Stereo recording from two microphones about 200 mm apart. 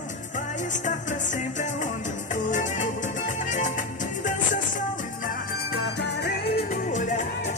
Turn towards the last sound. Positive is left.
turn(degrees=40)  # may be behind; listen again after turning